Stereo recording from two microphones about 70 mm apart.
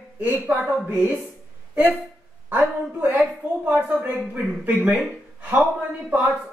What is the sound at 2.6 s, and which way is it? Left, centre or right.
Speech, centre.